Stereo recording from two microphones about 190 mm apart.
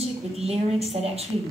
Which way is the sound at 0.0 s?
35° right (ahead or behind).